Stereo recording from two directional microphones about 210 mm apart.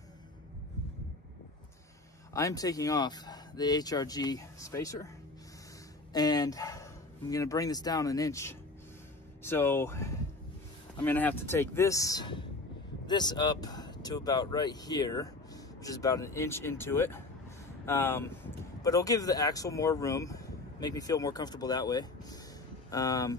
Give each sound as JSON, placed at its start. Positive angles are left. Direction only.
{"t": 2.3, "sound": "speech", "side_deg": 15}
{"t": 6.1, "sound": "speech", "side_deg": 20}